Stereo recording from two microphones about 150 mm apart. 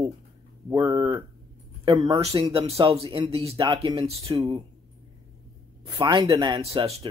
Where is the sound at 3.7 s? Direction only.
30° right (ahead or behind).